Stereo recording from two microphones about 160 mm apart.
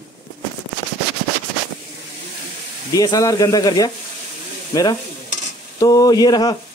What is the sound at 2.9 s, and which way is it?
Speech, 20° left (ahead or behind).